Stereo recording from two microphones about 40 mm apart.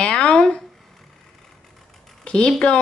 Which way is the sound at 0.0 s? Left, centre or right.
Left.